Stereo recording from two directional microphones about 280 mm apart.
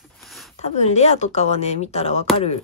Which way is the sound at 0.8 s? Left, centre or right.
Left.